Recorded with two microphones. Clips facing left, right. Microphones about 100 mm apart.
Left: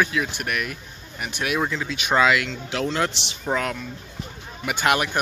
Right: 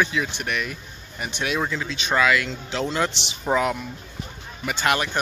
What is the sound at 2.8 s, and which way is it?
Speech, centre (ahead or behind).